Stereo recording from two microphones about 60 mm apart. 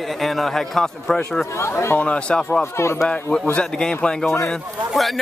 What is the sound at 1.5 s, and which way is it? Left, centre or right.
Speech, left.